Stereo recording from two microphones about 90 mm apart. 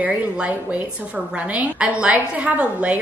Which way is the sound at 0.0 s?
15° right (ahead or behind).